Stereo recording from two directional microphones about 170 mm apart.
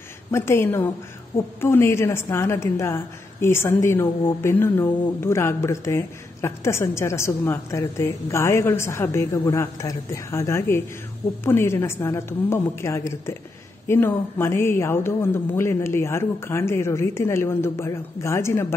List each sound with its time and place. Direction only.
0.3 s speech: 15° left (ahead or behind)